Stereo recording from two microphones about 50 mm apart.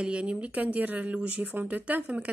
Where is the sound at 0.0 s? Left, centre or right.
Right.